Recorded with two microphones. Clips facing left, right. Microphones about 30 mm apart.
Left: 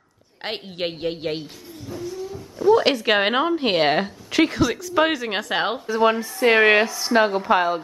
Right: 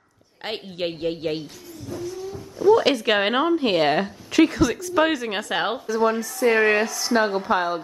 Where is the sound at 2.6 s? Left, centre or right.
Centre.